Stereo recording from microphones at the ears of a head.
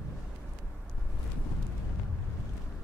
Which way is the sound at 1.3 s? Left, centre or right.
Left.